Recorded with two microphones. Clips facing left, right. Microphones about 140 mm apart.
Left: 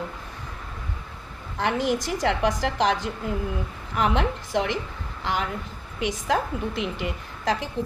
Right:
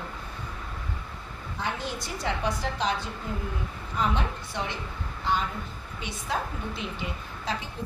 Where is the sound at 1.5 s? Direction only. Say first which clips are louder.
Left 9 dB; 85° left.